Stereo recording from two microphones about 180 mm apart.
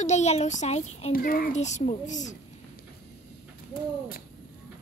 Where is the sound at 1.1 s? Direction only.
55° left (ahead or behind).